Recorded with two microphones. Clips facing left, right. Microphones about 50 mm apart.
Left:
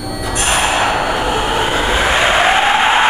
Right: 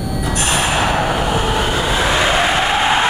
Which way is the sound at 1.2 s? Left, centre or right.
Centre.